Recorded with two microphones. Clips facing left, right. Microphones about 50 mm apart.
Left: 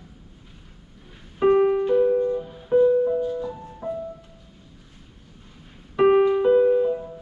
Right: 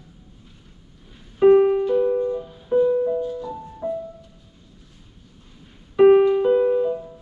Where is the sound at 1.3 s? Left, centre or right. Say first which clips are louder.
Right 4 dB; centre.